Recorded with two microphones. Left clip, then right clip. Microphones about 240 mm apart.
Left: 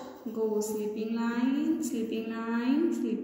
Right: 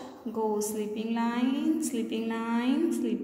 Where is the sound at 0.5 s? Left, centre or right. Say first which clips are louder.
Even; right.